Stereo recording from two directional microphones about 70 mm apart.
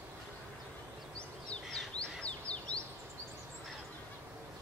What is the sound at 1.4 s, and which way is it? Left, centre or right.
Bird, centre.